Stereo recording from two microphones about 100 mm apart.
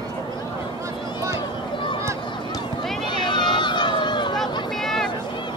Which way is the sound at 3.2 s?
50° left (ahead or behind).